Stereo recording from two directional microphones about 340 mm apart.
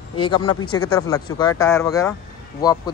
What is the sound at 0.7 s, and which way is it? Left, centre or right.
Speech, left.